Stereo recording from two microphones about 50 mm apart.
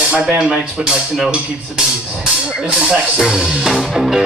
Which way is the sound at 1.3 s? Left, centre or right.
Centre.